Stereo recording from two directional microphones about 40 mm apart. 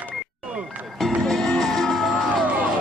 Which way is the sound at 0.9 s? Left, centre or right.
Centre.